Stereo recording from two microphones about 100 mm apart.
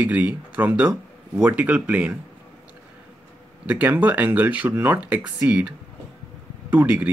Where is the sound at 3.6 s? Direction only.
15° right (ahead or behind).